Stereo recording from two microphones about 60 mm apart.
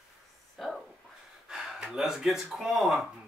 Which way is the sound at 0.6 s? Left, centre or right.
Centre.